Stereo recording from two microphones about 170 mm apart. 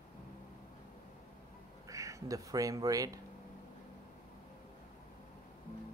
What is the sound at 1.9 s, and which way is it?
Speech, 20° right (ahead or behind).